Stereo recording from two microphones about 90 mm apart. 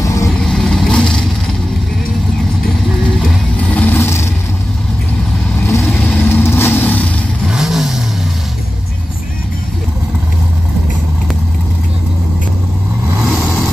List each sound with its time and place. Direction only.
0.0 s vehicle: 35° left (ahead or behind)
0.4 s vehicle: 5° left (ahead or behind)
3.6 s vehicle: 15° left (ahead or behind)
5.9 s vehicle: 15° left (ahead or behind)
7.4 s vehicle: 5° right (ahead or behind)
13.2 s vehicle: 5° right (ahead or behind)